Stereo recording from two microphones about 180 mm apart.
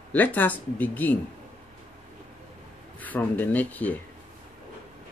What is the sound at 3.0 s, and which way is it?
Speech, 10° left (ahead or behind).